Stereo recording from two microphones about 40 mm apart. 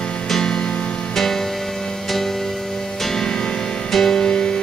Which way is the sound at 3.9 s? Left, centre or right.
Centre.